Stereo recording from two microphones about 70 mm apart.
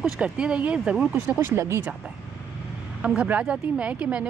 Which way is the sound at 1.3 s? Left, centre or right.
Right.